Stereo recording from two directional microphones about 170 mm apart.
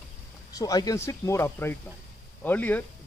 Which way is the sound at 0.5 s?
20° left (ahead or behind).